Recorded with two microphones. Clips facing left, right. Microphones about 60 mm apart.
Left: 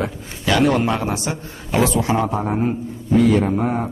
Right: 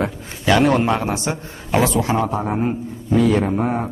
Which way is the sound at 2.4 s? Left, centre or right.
Centre.